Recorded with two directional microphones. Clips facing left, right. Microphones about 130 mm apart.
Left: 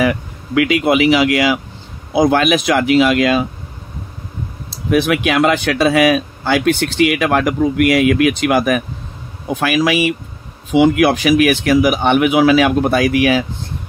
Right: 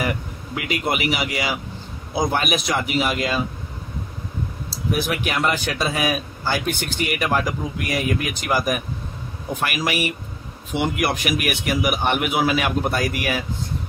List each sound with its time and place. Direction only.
0.0 s speech: 90° left
4.8 s a man's voice: 75° left (ahead or behind)